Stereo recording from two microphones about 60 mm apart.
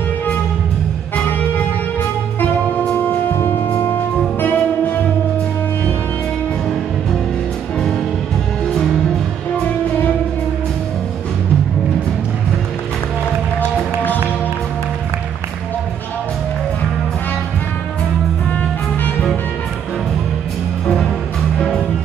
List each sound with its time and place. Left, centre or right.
2.8 s music: left
3.3 s music: left